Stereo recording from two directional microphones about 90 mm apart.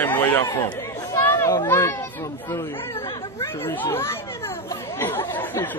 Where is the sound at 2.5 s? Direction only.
30° left (ahead or behind).